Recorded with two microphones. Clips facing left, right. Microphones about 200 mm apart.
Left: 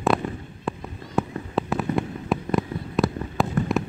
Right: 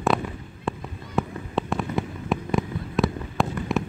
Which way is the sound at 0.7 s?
Centre (ahead or behind).